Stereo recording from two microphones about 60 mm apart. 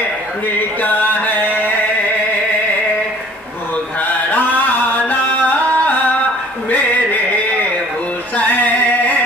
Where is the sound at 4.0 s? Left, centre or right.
Left.